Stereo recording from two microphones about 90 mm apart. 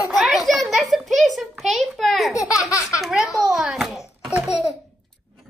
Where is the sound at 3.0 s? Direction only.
Centre (ahead or behind).